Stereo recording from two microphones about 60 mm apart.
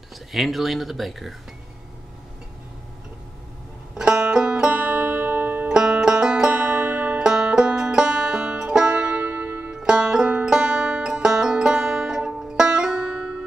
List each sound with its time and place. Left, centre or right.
0.3 s speech: centre
3.9 s banjo: centre
4.7 s music: right
5.7 s banjo: centre
9.8 s music: centre